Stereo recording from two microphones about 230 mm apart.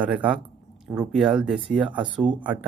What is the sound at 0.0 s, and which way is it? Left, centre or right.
Speech, centre.